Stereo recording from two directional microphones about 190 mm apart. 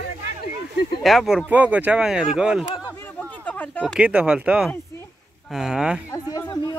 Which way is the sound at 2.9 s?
10° left (ahead or behind).